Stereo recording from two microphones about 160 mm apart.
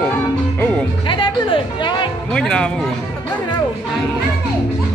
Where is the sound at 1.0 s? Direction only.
30° left (ahead or behind).